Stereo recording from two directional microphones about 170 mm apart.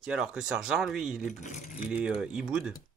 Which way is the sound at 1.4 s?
45° left (ahead or behind).